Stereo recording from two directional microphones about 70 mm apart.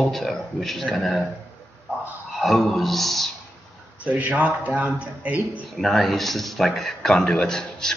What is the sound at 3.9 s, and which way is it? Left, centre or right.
Speech, right.